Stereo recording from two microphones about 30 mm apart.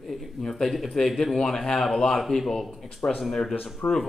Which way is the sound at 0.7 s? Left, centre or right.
Centre.